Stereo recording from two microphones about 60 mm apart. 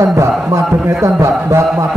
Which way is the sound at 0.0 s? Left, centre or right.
Right.